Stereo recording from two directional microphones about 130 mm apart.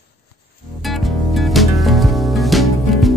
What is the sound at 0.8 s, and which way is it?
Music, centre (ahead or behind).